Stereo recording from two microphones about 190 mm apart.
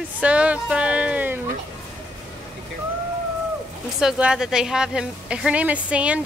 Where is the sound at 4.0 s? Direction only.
5° right (ahead or behind).